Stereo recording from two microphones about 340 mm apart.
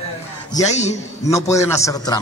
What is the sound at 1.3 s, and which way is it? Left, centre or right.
Speech, centre.